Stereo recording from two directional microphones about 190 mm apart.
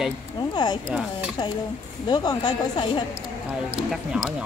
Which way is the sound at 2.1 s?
20° left (ahead or behind).